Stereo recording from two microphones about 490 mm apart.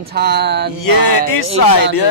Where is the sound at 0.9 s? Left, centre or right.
Left.